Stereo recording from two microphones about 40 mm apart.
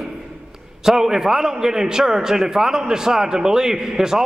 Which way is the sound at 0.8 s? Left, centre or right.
Centre.